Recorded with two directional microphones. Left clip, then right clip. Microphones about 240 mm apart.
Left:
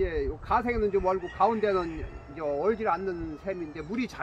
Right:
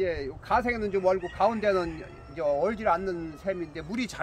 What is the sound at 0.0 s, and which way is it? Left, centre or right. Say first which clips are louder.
A man's voice: even; right.